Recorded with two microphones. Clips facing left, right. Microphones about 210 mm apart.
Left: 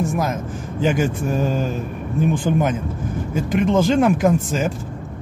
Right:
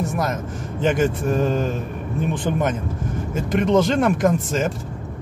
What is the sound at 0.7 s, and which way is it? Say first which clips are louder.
Speech: even; 5° left (ahead or behind).